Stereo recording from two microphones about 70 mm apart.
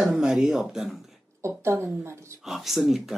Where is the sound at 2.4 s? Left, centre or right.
Centre.